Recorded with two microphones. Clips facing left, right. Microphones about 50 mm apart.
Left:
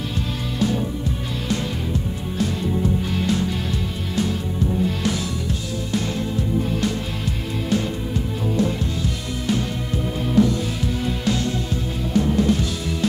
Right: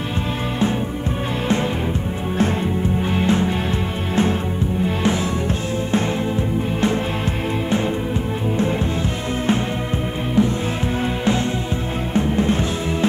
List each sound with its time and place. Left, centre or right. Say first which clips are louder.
3.0 s music: right 4 dB; right
12.1 s music: even; right